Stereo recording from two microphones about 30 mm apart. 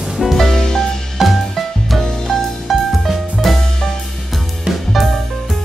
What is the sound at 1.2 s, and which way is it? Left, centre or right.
Music, centre.